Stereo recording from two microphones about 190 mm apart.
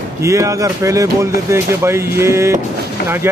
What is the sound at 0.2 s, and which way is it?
A man's voice, 15° right (ahead or behind).